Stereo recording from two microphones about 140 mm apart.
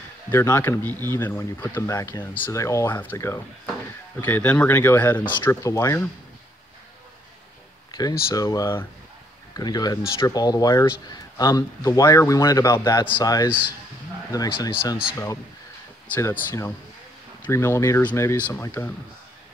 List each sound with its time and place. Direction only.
0.3 s speech: 15° left (ahead or behind)
5.4 s speech: 20° left (ahead or behind)
7.9 s speech: 25° left (ahead or behind)
16.2 s speech: 20° left (ahead or behind)